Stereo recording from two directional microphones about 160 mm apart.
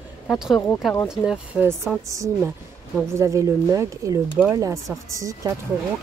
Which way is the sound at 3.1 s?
20° right (ahead or behind).